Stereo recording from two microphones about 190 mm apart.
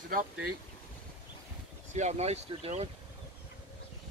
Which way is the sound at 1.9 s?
35° right (ahead or behind).